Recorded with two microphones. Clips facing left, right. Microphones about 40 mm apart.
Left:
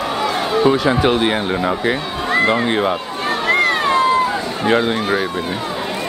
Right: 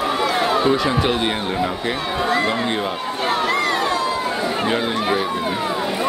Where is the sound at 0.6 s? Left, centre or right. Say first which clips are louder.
Left 3 dB; centre.